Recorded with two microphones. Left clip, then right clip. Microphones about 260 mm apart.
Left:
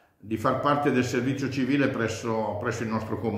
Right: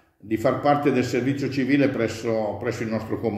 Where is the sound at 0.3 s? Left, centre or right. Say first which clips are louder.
Right 4 dB; centre.